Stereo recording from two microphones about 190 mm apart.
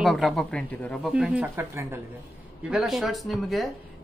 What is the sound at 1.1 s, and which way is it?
Speech, 5° right (ahead or behind).